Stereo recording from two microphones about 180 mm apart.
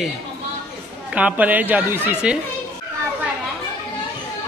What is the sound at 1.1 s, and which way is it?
Speech, 5° right (ahead or behind).